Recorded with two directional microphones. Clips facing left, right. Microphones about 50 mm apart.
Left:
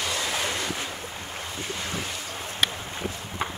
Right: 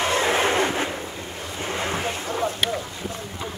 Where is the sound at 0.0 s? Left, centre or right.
Right.